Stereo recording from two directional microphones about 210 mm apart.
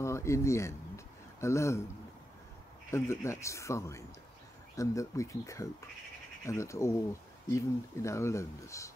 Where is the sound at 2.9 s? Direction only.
15° left (ahead or behind).